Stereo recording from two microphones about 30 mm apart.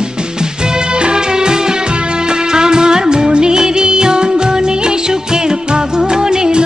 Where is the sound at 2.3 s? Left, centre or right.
Right.